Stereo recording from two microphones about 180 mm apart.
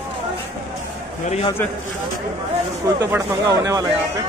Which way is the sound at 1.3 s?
35° left (ahead or behind).